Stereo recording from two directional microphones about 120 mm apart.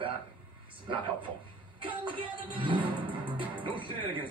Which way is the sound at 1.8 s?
45° right (ahead or behind).